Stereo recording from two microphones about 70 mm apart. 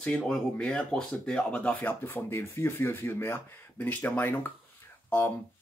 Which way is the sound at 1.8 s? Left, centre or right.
Left.